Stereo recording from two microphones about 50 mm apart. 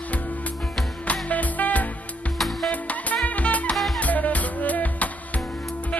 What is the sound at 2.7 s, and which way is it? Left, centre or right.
Music, left.